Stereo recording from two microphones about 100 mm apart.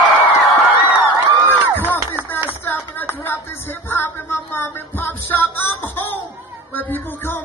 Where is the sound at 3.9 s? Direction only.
20° left (ahead or behind).